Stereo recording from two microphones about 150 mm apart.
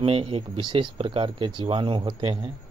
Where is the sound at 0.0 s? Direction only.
40° right (ahead or behind).